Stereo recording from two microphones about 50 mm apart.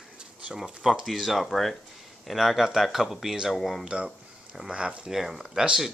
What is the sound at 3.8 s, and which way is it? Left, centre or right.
Speech, centre.